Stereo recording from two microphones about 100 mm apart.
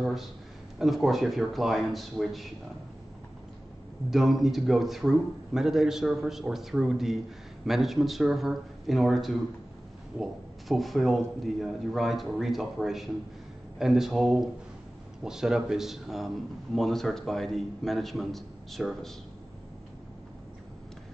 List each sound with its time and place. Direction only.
0.0 s a man's voice: centre (ahead or behind)
4.1 s a man's voice: centre (ahead or behind)
10.7 s a man's voice: centre (ahead or behind)